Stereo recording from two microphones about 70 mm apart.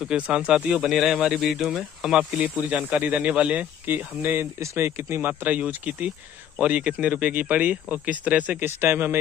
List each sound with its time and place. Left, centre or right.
0.0 s speech: centre
2.1 s speech: centre
3.8 s speech: right